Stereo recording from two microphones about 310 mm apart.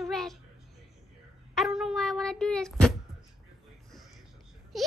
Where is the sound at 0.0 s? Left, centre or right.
Centre.